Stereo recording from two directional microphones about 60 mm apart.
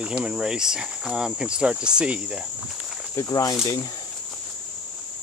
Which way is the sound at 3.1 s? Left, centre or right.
Left.